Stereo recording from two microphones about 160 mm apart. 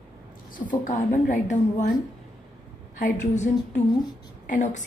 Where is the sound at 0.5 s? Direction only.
55° left (ahead or behind).